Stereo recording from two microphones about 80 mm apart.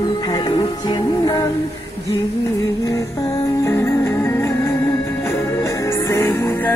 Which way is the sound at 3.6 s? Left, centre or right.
Left.